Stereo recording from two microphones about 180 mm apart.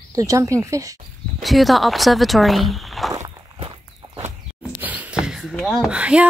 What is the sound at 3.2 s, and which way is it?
Walk, 30° right (ahead or behind).